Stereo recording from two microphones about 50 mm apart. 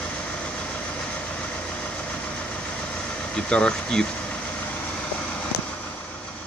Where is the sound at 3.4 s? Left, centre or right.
Left.